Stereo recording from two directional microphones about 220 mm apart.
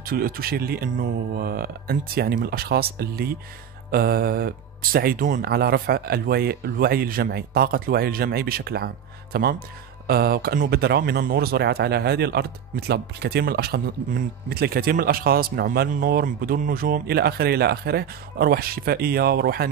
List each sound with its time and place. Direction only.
0.0 s speech: 40° right (ahead or behind)